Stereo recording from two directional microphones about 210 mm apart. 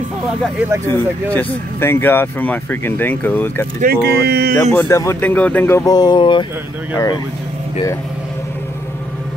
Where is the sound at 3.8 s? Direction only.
50° right (ahead or behind).